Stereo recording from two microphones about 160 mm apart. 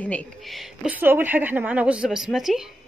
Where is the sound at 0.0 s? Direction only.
10° left (ahead or behind).